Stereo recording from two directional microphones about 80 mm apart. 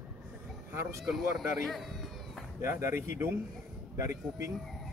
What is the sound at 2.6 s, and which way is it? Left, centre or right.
Speech, right.